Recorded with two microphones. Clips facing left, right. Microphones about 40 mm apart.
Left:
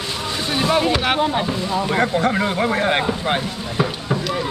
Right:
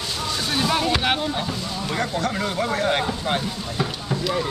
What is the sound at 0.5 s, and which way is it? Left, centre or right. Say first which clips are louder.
Boat: left 4 dB; centre.